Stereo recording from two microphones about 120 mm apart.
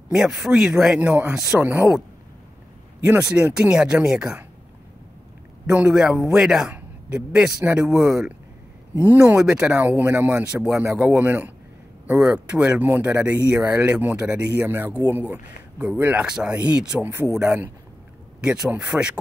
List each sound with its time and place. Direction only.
0.1 s a man's voice: 5° right (ahead or behind)
3.0 s speech: 5° right (ahead or behind)
5.7 s a man's voice: 10° right (ahead or behind)
17.1 s speech: 20° right (ahead or behind)